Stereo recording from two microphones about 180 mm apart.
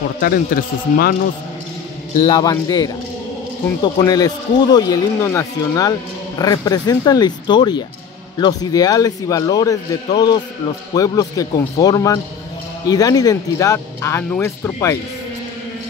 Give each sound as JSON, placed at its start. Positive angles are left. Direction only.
{"t": 0.2, "sound": "speech", "side_deg": 55}
{"t": 2.2, "sound": "speech", "side_deg": 20}